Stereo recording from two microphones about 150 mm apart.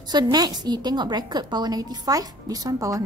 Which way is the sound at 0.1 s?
25° right (ahead or behind).